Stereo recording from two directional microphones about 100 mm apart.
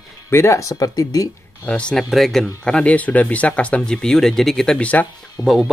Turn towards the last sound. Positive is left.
turn(degrees=-5)  # may be behind; listen again after turning